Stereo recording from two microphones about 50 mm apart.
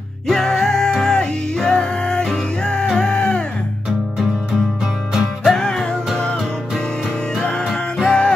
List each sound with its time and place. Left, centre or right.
0.3 s music: centre
5.5 s music: centre